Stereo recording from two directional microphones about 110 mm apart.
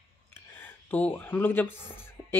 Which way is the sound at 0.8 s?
15° left (ahead or behind).